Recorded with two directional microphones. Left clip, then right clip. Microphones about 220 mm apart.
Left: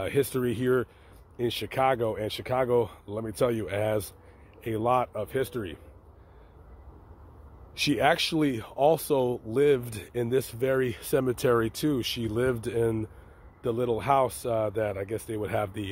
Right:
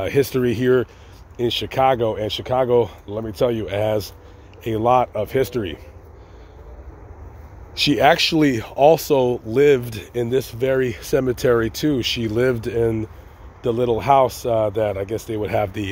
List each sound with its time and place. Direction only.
0.0 s speech: 15° left (ahead or behind)
7.7 s speech: 15° left (ahead or behind)